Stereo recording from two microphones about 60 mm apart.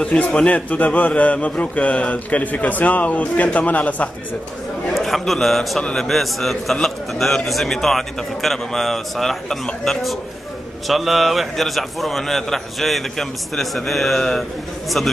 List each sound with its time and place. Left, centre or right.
0.0 s a man's voice: centre
4.9 s a man's voice: centre